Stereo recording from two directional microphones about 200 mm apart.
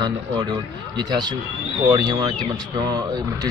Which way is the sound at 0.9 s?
20° right (ahead or behind).